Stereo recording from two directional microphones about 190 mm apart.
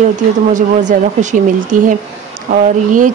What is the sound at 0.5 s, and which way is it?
Speech, 40° right (ahead or behind).